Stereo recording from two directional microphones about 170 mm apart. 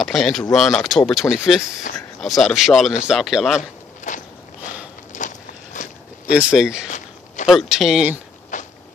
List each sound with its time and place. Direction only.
0.0 s speech: centre (ahead or behind)
4.1 s walk: 45° left (ahead or behind)
6.3 s speech: 5° right (ahead or behind)
8.5 s walk: 45° left (ahead or behind)